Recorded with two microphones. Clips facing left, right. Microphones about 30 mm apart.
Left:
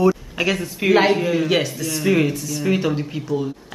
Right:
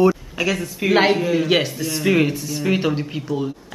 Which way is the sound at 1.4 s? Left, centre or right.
Centre.